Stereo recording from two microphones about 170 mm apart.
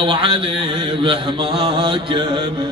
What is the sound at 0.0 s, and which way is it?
Speech, 30° right (ahead or behind).